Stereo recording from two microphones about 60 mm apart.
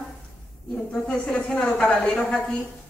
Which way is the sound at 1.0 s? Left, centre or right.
Centre.